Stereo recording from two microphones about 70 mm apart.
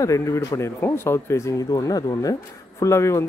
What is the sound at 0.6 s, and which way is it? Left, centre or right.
Speech, left.